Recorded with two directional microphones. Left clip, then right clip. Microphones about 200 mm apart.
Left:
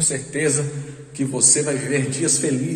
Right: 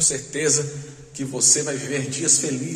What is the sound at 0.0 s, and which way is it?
A man's voice, 10° right (ahead or behind).